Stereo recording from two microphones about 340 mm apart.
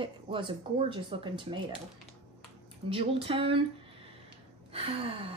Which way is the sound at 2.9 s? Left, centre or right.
Centre.